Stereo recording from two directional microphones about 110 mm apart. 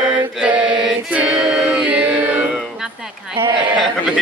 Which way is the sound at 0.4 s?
10° right (ahead or behind).